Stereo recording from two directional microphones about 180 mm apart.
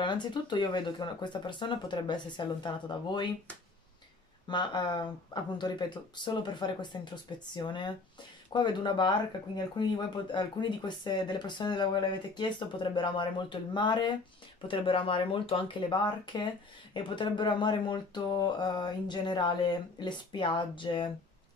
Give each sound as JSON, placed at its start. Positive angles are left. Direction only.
{"t": 0.0, "sound": "speech", "side_deg": 25}
{"t": 4.5, "sound": "speech", "side_deg": 25}